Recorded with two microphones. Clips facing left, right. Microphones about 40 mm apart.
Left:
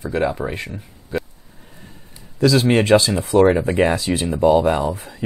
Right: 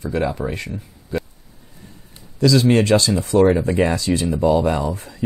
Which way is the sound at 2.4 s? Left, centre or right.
Left.